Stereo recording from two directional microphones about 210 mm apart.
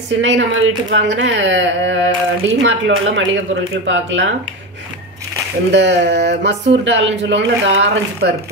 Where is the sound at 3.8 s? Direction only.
60° right (ahead or behind).